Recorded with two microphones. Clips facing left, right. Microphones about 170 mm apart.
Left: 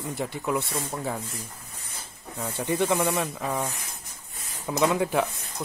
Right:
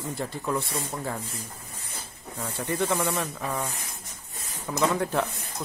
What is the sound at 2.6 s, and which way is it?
Speech, 20° left (ahead or behind).